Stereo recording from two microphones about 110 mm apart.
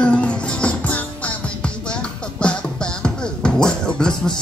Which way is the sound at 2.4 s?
10° left (ahead or behind).